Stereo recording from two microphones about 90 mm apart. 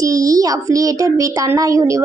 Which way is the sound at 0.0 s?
40° right (ahead or behind).